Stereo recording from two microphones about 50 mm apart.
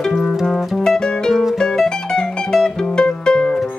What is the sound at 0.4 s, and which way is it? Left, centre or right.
Music, centre.